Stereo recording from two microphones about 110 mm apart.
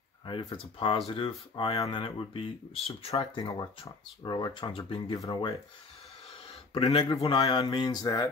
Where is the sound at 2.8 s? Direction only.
65° left (ahead or behind).